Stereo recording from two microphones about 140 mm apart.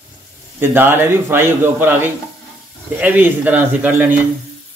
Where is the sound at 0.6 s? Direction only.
15° right (ahead or behind).